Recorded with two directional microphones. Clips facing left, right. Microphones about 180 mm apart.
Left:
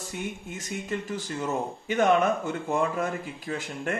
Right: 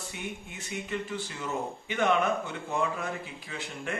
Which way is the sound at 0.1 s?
40° left (ahead or behind).